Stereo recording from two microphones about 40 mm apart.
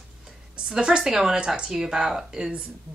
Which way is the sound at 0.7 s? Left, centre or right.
Centre.